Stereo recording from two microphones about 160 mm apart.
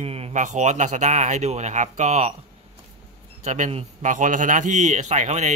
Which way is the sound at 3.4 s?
45° right (ahead or behind).